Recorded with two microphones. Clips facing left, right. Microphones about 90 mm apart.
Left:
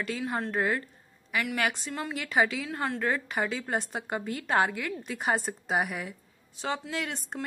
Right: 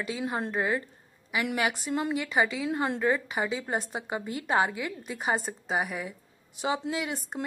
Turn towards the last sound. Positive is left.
turn(degrees=-5)  # may be behind; listen again after turning